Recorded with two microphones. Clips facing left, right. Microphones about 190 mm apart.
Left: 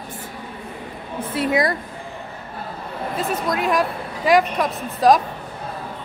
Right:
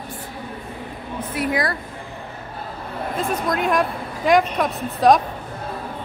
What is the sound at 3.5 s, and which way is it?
A woman's voice, centre (ahead or behind).